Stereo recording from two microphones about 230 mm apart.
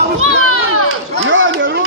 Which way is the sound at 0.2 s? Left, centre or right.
Right.